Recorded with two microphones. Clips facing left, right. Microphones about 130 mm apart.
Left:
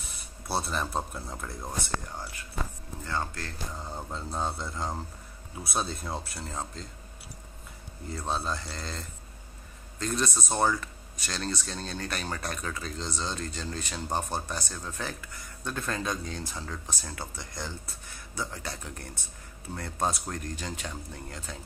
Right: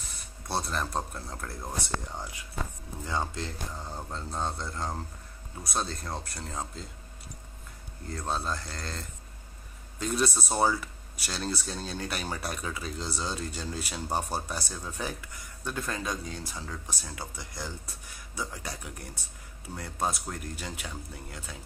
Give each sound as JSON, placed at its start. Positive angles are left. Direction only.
{"t": 0.5, "sound": "speech", "side_deg": 5}
{"t": 3.1, "sound": "speech", "side_deg": -15}
{"t": 3.7, "sound": "speech", "side_deg": 0}
{"t": 8.1, "sound": "speech", "side_deg": 5}